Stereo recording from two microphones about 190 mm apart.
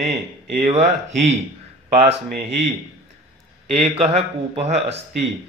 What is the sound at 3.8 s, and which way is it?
A man's voice, 30° right (ahead or behind).